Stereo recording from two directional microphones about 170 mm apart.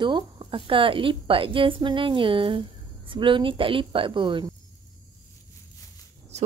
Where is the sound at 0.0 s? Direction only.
30° right (ahead or behind).